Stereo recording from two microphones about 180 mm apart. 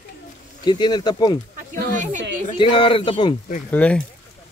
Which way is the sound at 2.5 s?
30° left (ahead or behind).